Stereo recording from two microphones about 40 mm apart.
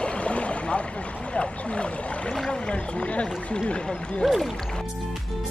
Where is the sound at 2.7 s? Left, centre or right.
Left.